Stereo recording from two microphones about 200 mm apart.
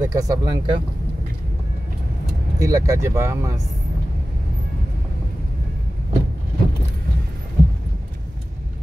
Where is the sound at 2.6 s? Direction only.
15° right (ahead or behind).